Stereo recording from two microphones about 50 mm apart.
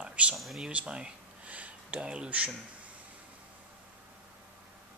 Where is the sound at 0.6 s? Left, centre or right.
Right.